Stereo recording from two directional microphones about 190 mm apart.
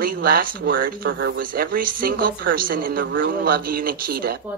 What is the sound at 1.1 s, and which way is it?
Speech, 70° right (ahead or behind).